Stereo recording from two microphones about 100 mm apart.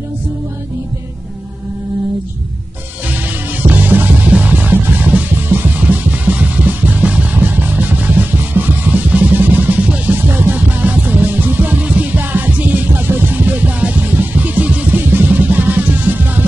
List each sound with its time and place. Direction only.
3.6 s music: 20° right (ahead or behind)